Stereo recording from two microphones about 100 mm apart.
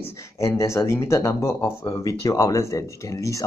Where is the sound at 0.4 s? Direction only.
30° left (ahead or behind).